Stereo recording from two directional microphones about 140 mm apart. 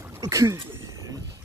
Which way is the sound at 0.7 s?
20° right (ahead or behind).